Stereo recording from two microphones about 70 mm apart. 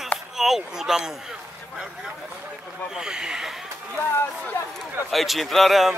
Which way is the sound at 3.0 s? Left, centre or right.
Centre.